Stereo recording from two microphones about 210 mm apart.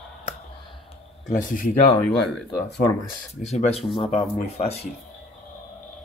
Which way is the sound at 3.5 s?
35° left (ahead or behind).